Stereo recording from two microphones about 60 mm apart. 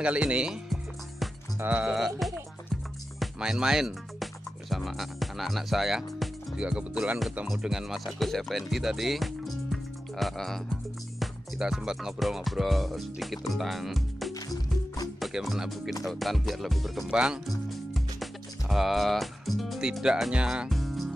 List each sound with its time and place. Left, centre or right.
0.0 s speech: centre
1.7 s music: right
2.0 s music: centre
6.5 s speech: centre
7.4 s speech: centre
11.1 s speech: centre
14.3 s music: left
15.1 s music: centre
17.1 s speech: centre
17.6 s music: centre
19.8 s speech: centre
20.7 s music: centre